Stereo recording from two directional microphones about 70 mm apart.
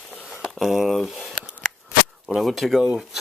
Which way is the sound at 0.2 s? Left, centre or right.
Centre.